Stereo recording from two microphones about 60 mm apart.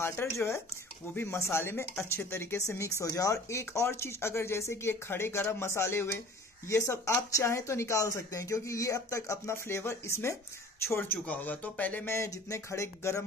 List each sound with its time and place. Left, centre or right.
0.0 s speech: left
10.9 s speech: left
11.2 s speech: left
12.3 s speech: left